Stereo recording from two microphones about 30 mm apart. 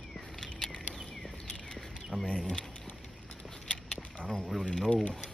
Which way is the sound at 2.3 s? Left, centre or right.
Left.